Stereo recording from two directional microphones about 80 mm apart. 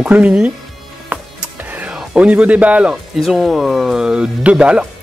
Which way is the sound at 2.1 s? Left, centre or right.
Centre.